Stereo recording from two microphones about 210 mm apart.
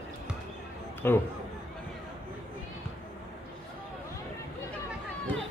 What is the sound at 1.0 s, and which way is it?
Speech, 10° left (ahead or behind).